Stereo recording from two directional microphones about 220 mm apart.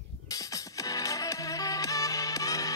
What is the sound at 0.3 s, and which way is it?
Music, 15° left (ahead or behind).